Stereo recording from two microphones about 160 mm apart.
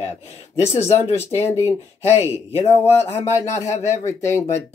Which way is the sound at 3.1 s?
15° left (ahead or behind).